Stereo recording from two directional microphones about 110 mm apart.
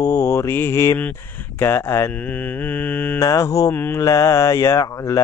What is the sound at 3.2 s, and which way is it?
Mantra, 30° left (ahead or behind).